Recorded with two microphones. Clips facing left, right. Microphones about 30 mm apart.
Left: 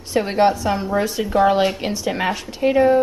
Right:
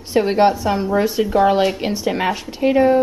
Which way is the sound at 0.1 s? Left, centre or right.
Centre.